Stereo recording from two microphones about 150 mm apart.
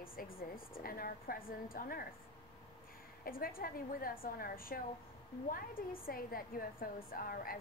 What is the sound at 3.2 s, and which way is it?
A woman's voice, 75° left (ahead or behind).